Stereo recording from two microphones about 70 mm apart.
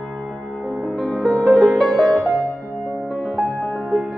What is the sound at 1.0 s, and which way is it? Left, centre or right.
Music, centre.